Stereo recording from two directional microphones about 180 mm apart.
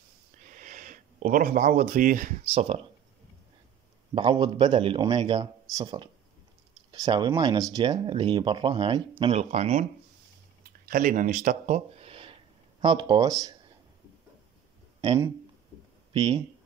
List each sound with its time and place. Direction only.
0.5 s a sound: 45° right (ahead or behind)
2.5 s speech: 35° right (ahead or behind)
4.1 s speech: 25° right (ahead or behind)
9.2 s speech: 35° right (ahead or behind)
10.6 s a sound: 50° right (ahead or behind); by 12.4 s 30° right (ahead or behind)
12.8 s speech: 25° right (ahead or behind)
15.0 s speech: 20° right (ahead or behind)